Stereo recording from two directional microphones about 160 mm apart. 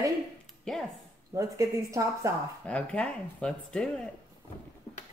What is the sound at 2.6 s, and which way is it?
Speech, 5° left (ahead or behind).